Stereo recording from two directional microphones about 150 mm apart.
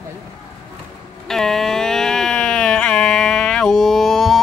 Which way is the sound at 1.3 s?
Centre (ahead or behind).